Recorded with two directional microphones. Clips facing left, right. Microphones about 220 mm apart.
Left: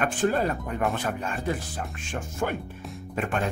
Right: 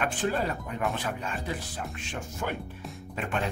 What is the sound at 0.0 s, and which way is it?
Speech, 50° left (ahead or behind).